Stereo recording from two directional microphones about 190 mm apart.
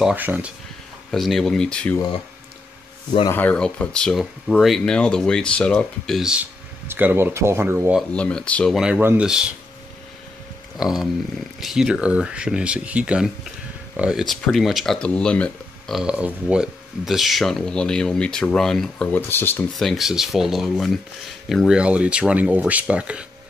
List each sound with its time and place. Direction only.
0.0 s speech: 10° right (ahead or behind)
3.1 s speech: 25° left (ahead or behind)
3.3 s speech: 5° left (ahead or behind); by 8.0 s 10° right (ahead or behind)
8.1 s speech: 5° left (ahead or behind)
10.8 s speech: centre (ahead or behind)